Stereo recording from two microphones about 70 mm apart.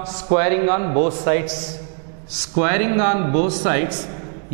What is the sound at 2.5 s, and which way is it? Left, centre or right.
Speech, centre.